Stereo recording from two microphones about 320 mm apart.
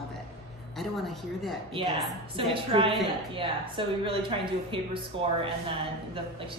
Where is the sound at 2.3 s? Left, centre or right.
Centre.